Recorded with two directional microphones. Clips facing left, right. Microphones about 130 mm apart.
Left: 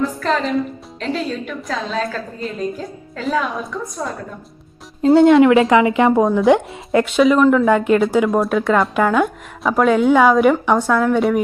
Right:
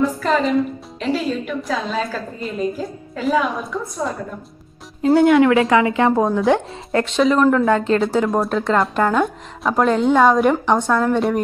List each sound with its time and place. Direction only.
0.0 s a woman's voice: 5° right (ahead or behind)
5.0 s a woman's voice: 25° left (ahead or behind); by 7.7 s centre (ahead or behind)
7.7 s a woman's voice: 10° left (ahead or behind)